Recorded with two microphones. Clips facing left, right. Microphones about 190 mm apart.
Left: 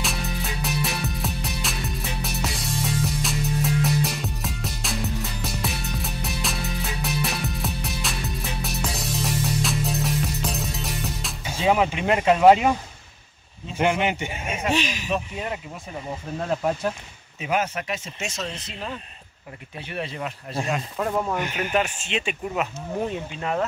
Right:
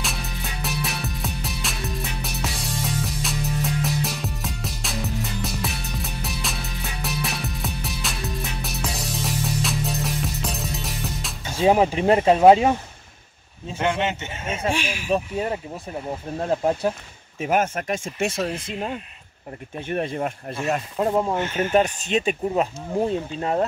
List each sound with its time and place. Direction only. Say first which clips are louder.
0.0 s music: left 2 dB; centre (ahead or behind)
11.6 s speech: right 4 dB; 35° right (ahead or behind)
13.7 s a man's voice: left 1 dB; 15° left (ahead or behind)
14.7 s speech: right 1 dB; 10° right (ahead or behind)
16.3 s speech: right 3 dB; 30° right (ahead or behind)
17.4 s speech: right 3 dB; 50° right (ahead or behind)
21.0 s speech: right 4 dB; 25° right (ahead or behind)
21.4 s a man's voice: right 4 dB; 15° left (ahead or behind)
21.7 s speech: right 5 dB; 40° right (ahead or behind)